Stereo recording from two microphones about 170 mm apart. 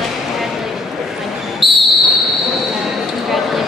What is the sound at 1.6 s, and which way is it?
Basketball bounce, centre (ahead or behind).